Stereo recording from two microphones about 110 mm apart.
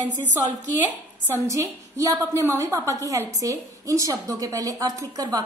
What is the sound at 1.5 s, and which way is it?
A woman's voice, 30° right (ahead or behind).